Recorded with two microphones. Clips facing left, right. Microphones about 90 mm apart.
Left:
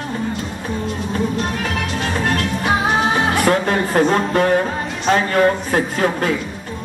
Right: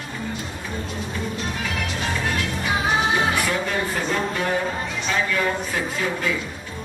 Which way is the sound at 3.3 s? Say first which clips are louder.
Left 7 dB; 50° left (ahead or behind).